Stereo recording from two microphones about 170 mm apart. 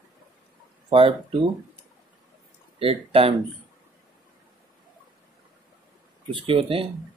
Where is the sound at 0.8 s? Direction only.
30° right (ahead or behind).